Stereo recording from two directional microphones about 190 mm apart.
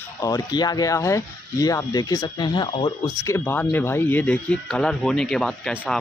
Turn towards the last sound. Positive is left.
turn(degrees=0)  # may be behind; listen again after turning